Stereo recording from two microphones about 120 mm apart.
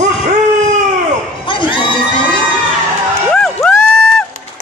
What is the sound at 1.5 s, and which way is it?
Crowd, 45° left (ahead or behind).